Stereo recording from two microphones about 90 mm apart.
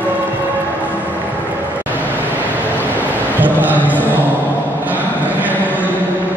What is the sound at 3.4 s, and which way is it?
Music, 20° right (ahead or behind).